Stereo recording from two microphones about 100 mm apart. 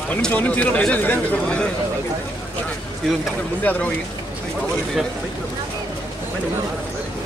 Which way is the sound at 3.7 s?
15° left (ahead or behind).